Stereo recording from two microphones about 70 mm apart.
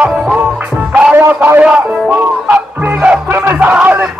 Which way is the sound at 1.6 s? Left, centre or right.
Centre.